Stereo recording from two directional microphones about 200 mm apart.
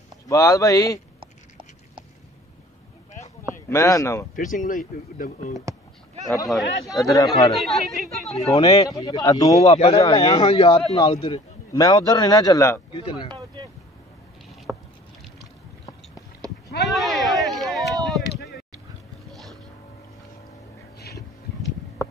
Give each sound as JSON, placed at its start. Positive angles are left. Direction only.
{"t": 0.3, "sound": "a man's voice", "side_deg": 15}
{"t": 3.6, "sound": "a man's voice", "side_deg": 15}
{"t": 4.4, "sound": "speech", "side_deg": 40}
{"t": 6.2, "sound": "a man's voice", "side_deg": 15}
{"t": 6.5, "sound": "speech", "side_deg": 0}
{"t": 7.1, "sound": "speech", "side_deg": 20}
{"t": 7.5, "sound": "speech", "side_deg": 0}
{"t": 8.5, "sound": "speech", "side_deg": 20}
{"t": 9.6, "sound": "speech", "side_deg": 30}
{"t": 11.7, "sound": "a man's voice", "side_deg": 20}
{"t": 12.9, "sound": "speech", "side_deg": 25}
{"t": 14.7, "sound": "rowboat", "side_deg": 0}
{"t": 16.4, "sound": "sheep", "side_deg": -15}
{"t": 16.8, "sound": "a sound", "side_deg": 0}